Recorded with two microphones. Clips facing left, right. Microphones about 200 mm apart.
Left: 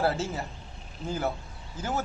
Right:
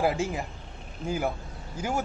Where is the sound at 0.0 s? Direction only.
15° right (ahead or behind).